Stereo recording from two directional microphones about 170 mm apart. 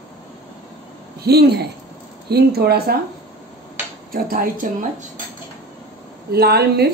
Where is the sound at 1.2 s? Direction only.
70° right (ahead or behind).